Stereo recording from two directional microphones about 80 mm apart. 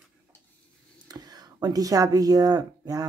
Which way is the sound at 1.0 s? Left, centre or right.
Right.